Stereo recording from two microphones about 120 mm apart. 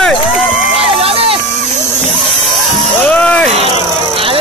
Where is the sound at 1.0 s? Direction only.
55° right (ahead or behind).